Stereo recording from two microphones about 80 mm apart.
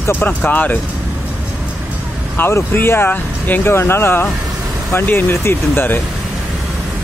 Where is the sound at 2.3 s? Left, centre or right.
Left.